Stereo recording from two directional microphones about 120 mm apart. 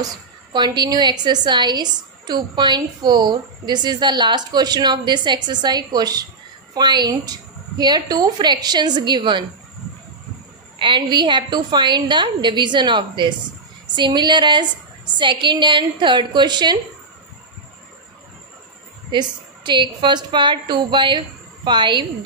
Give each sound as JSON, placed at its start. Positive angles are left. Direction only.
{"t": 0.0, "sound": "a woman's voice", "side_deg": -35}
{"t": 10.8, "sound": "a woman's voice", "side_deg": -40}
{"t": 19.0, "sound": "a woman's voice", "side_deg": -40}